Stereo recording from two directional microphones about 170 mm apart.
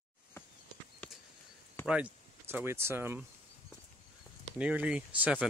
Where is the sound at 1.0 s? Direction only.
10° left (ahead or behind).